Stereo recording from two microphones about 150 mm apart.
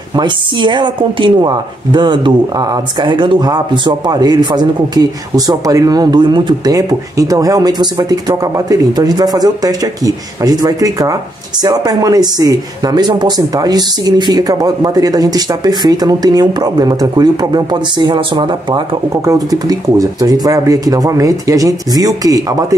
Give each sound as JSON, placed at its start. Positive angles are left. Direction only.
{"t": 0.1, "sound": "a woman's voice", "side_deg": -30}